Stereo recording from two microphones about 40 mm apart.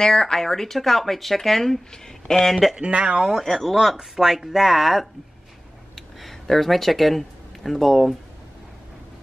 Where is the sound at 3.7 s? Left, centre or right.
Centre.